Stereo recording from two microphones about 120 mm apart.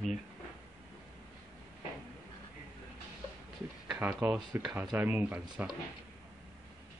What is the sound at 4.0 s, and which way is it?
Speech, 15° right (ahead or behind).